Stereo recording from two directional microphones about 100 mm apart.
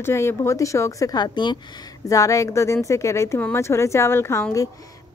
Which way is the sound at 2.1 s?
30° left (ahead or behind).